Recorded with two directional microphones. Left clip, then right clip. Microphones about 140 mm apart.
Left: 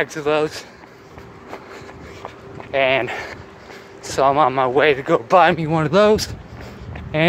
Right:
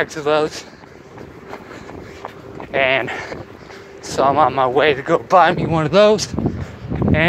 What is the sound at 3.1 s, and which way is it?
A man's voice, 35° left (ahead or behind).